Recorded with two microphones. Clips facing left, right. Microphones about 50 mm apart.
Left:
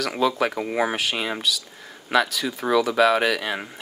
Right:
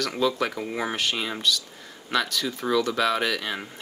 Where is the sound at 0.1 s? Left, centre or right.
Centre.